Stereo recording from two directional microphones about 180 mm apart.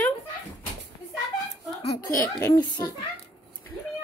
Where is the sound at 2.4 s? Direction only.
20° left (ahead or behind).